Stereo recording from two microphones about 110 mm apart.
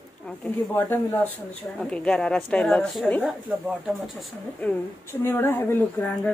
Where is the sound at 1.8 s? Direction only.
10° left (ahead or behind).